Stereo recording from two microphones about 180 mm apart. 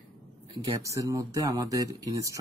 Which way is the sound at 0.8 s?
15° right (ahead or behind).